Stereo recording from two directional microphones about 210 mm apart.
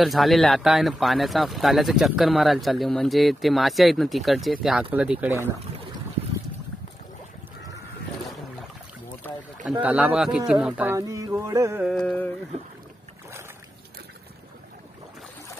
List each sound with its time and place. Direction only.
0.0 s speech: centre (ahead or behind)
9.7 s speech: 5° right (ahead or behind)
11.9 s speech: 5° left (ahead or behind)
12.5 s speech: 30° right (ahead or behind)